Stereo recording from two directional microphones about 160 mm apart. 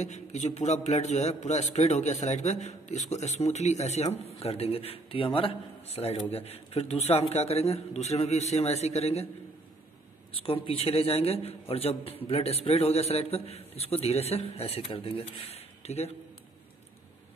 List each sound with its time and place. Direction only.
0.0 s a man's voice: 45° left (ahead or behind)
10.3 s a man's voice: 35° left (ahead or behind)